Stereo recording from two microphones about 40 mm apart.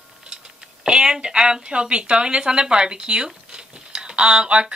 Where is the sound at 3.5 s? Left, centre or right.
Right.